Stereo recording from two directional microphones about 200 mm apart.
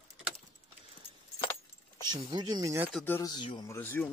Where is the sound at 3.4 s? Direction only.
25° left (ahead or behind).